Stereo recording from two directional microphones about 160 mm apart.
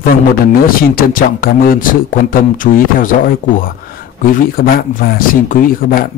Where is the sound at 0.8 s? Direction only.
65° left (ahead or behind).